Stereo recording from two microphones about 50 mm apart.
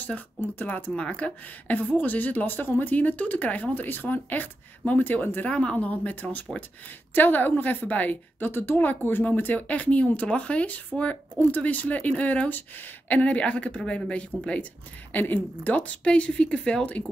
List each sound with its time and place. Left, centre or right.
0.6 s speech: left
0.9 s a woman's voice: left
5.5 s a woman's voice: centre
5.8 s a woman's voice: left
8.5 s a woman's voice: left
13.1 s a woman's voice: left
15.1 s a woman's voice: left